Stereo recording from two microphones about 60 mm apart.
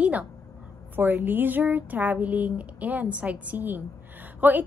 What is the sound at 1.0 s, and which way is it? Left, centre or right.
A woman's voice, right.